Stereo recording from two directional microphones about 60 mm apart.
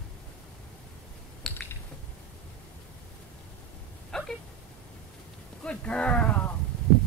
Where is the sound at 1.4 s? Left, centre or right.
Centre.